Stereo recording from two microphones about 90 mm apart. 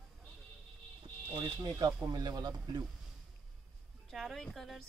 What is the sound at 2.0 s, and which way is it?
Speech, 45° right (ahead or behind).